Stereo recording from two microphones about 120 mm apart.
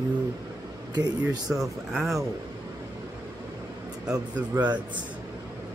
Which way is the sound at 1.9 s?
Centre (ahead or behind).